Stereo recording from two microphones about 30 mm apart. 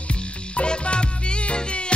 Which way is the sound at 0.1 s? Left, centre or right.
Left.